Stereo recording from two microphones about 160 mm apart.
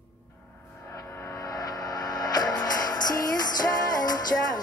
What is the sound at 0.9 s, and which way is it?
Music, 20° left (ahead or behind).